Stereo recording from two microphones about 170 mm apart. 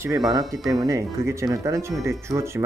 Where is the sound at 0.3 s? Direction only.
20° right (ahead or behind).